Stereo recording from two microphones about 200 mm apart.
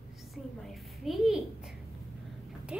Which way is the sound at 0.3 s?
Centre (ahead or behind).